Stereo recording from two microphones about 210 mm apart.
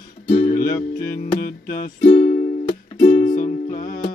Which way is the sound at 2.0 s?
25° left (ahead or behind).